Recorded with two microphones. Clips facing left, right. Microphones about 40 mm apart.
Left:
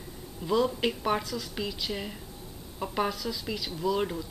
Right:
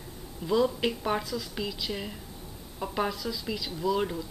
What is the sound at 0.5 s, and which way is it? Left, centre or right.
A woman's voice, centre.